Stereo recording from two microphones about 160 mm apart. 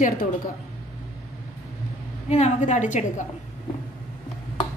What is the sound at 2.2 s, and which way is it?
A woman's voice, 45° left (ahead or behind).